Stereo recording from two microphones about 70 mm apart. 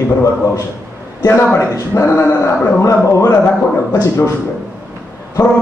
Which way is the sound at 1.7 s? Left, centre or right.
Left.